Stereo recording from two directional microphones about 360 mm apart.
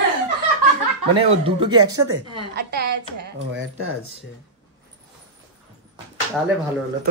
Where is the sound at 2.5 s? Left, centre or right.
Right.